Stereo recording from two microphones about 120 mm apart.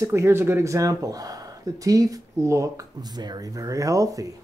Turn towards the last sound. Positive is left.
turn(degrees=-30)  # may be behind; listen again after turning